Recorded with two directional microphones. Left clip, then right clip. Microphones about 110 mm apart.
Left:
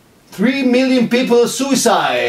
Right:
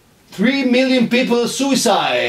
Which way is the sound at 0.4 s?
20° left (ahead or behind).